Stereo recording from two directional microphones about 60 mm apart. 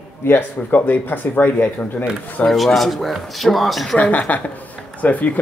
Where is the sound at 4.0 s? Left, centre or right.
Left.